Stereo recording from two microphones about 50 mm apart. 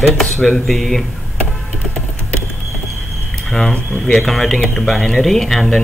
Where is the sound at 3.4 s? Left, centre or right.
Centre.